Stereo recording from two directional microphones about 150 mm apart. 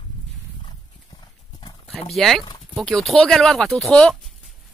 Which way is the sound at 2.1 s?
Centre (ahead or behind).